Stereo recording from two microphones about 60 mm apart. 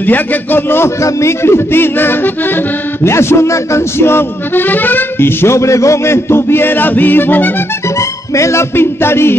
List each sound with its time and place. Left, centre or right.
0.0 s music: left
3.0 s speech: left
5.6 s music: left
8.4 s speech: left